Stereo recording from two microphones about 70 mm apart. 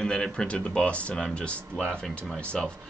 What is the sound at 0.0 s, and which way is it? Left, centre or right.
Speech, centre.